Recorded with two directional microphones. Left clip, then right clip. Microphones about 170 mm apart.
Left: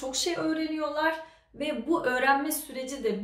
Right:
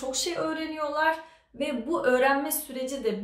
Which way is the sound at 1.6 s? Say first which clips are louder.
Right 1 dB; 5° right (ahead or behind).